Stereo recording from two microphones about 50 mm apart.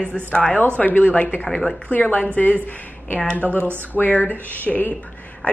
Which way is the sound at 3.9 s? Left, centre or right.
Left.